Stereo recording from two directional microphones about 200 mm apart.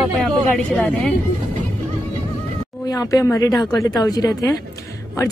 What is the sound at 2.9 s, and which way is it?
Speech, 15° left (ahead or behind).